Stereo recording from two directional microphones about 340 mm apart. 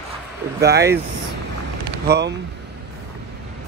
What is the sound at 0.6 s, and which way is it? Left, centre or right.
Speech, right.